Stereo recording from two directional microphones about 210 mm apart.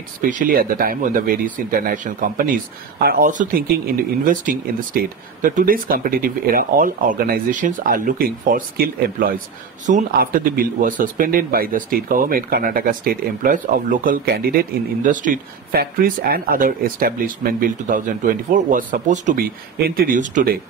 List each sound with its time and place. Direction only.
0.2 s speech: 40° right (ahead or behind)